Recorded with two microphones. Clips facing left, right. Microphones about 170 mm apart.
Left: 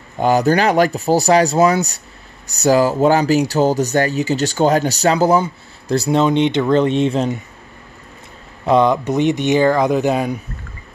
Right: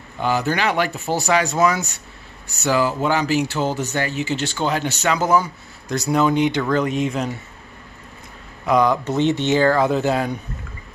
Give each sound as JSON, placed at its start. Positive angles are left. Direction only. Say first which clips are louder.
{"t": 0.2, "sound": "speech", "louder": "left 7 dB", "side_deg": 40}
{"t": 8.6, "sound": "speech", "louder": "left 4 dB", "side_deg": 25}